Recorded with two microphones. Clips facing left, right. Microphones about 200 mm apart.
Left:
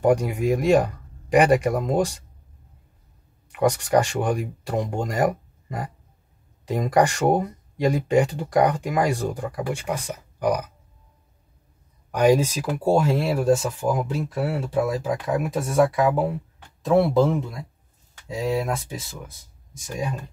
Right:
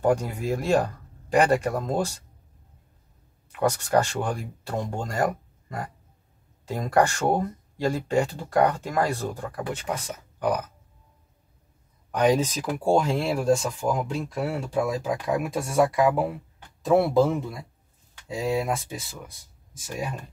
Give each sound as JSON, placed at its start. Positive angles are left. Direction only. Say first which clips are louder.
{"t": 0.0, "sound": "speech", "louder": "left 4 dB", "side_deg": 15}
{"t": 3.5, "sound": "speech", "louder": "left 3 dB", "side_deg": 15}
{"t": 12.1, "sound": "speech", "louder": "left 3 dB", "side_deg": 10}